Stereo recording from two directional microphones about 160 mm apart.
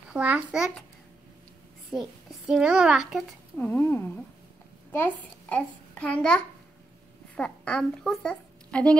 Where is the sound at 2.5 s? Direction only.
5° right (ahead or behind).